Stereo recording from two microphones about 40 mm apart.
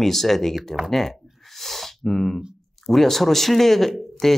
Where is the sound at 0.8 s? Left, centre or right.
Centre.